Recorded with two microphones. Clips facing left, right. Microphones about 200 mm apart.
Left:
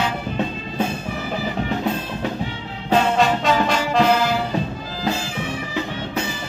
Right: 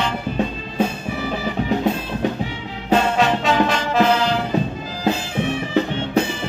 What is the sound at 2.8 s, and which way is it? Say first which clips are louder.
Music: even; centre (ahead or behind).